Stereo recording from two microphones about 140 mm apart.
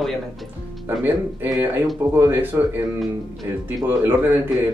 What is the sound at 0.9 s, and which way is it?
Speech, 15° right (ahead or behind).